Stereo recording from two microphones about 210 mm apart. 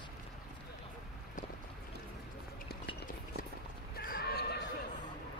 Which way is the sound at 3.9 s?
45° left (ahead or behind).